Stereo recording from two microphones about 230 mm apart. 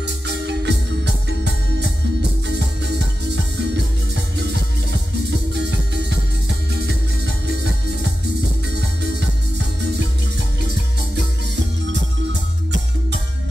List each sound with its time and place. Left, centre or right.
0.0 s music: right
5.6 s music: right